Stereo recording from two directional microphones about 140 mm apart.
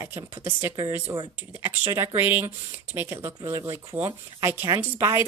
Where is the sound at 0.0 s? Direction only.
20° right (ahead or behind).